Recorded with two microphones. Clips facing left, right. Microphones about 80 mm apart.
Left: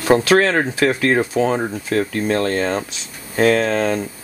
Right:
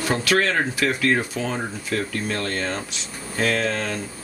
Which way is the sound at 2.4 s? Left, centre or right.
Centre.